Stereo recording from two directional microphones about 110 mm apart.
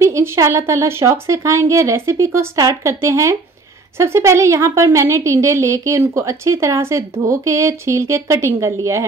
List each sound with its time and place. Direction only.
0.0 s a woman's voice: 25° right (ahead or behind)